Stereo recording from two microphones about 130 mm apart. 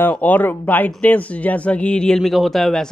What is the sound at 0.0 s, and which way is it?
Speech, 10° left (ahead or behind).